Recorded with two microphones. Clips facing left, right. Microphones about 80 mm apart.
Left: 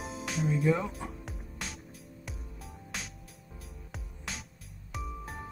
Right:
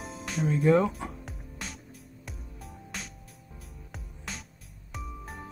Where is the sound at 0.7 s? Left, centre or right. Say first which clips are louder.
Right 8 dB; right.